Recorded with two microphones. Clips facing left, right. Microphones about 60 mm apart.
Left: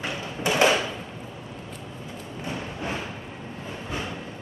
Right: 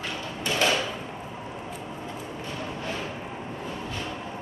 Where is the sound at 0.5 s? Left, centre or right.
Left.